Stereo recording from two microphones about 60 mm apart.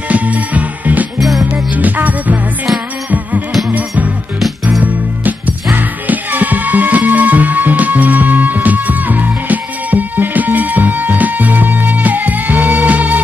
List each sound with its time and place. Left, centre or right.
0.1 s music: right
3.7 s music: right